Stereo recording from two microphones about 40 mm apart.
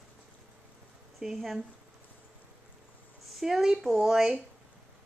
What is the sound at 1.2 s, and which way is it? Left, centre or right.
Speech, centre.